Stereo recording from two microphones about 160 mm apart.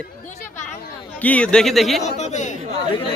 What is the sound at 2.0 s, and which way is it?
Speech, 45° left (ahead or behind).